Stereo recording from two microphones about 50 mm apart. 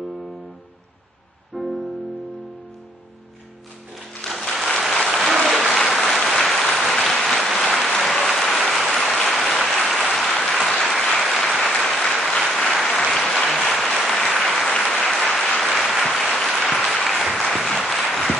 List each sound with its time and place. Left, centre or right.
1.5 s music: centre
4.4 s applause: centre
14.7 s applause: centre